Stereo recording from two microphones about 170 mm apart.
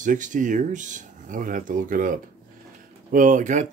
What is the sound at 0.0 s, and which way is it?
Speech, 50° right (ahead or behind).